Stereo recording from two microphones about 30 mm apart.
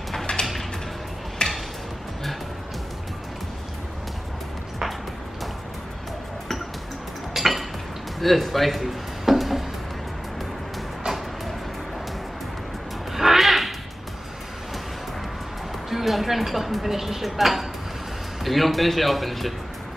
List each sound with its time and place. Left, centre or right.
0.3 s a sound: left
1.4 s music: left
7.3 s dishes: centre
8.2 s a man's voice: centre
9.3 s music: centre
11.1 s music: centre
13.1 s music: centre
15.9 s a man's voice: centre